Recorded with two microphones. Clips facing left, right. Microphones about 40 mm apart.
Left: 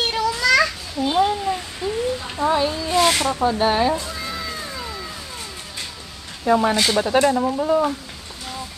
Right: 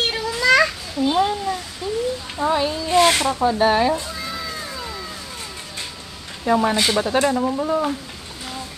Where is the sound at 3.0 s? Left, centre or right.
Right.